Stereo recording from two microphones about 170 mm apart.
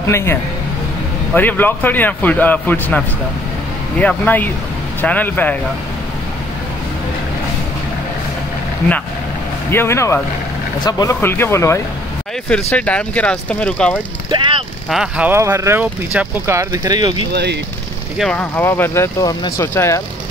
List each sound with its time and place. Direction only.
0.0 s a man's voice: 15° left (ahead or behind)
4.0 s a man's voice: 10° left (ahead or behind)
9.7 s a man's voice: 15° left (ahead or behind)
12.4 s a man's voice: 5° left (ahead or behind)
14.3 s speech: 30° right (ahead or behind)
14.9 s speech: 5° right (ahead or behind); by 17.3 s 25° right (ahead or behind)
17.3 s speech: 80° right
18.1 s a man's voice: 5° left (ahead or behind)